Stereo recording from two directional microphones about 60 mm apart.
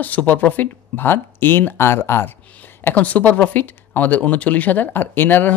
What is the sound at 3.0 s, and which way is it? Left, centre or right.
Speech, left.